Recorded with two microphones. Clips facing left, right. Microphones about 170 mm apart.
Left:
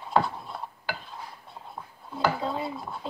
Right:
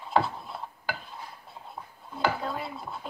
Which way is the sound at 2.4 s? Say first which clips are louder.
Left 3 dB; 20° left (ahead or behind).